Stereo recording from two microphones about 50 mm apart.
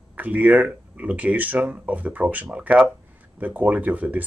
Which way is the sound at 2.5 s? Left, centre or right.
Centre.